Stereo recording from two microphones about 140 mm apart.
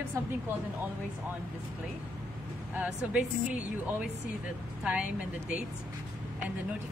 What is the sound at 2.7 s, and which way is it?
Speech, 10° right (ahead or behind).